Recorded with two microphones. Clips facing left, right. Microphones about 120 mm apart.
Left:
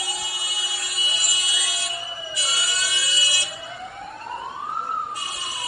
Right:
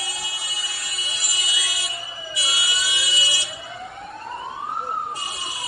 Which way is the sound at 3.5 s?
Centre (ahead or behind).